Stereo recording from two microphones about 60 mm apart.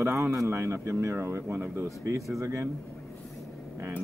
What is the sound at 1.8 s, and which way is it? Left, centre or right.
Speech, right.